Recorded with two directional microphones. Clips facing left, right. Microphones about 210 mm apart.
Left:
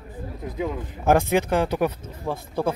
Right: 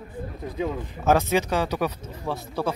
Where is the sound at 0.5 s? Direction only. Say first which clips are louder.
Even; 15° left (ahead or behind).